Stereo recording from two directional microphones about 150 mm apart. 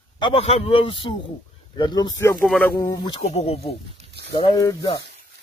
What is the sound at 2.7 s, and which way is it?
Speech, 25° left (ahead or behind).